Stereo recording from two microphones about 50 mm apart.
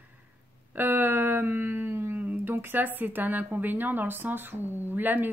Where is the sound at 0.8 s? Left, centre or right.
Right.